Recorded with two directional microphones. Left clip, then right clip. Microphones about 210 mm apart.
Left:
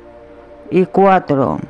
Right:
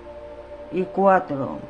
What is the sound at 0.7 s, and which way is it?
Speech, 45° left (ahead or behind).